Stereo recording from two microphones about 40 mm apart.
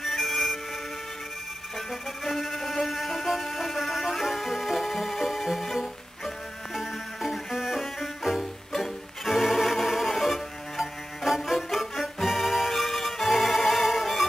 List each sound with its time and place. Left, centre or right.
0.0 s music: centre
1.9 s music: centre